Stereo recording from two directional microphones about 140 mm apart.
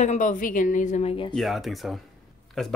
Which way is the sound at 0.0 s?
60° left (ahead or behind).